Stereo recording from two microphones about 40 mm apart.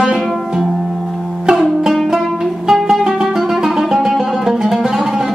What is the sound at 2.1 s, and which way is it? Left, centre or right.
Music, centre.